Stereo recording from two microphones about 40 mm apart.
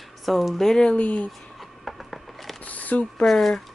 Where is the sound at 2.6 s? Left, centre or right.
Left.